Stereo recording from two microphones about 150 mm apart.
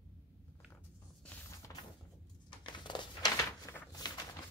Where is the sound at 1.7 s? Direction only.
20° left (ahead or behind).